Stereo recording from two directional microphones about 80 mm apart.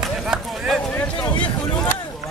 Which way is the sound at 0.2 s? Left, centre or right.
Centre.